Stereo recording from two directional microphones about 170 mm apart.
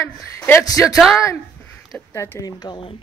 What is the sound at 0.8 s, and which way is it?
Speech, centre (ahead or behind).